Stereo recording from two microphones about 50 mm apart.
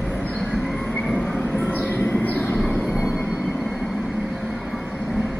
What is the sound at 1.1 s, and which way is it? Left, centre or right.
Train, left.